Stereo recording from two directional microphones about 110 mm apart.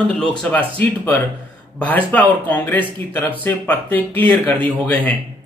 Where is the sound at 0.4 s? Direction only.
15° left (ahead or behind).